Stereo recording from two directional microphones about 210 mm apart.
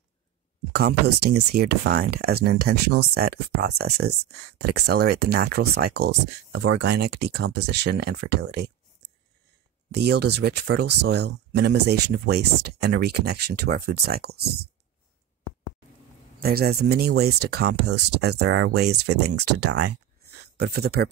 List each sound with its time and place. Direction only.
0.7 s speech: 50° right (ahead or behind)
9.9 s speech: 50° right (ahead or behind)
16.3 s speech: 45° right (ahead or behind)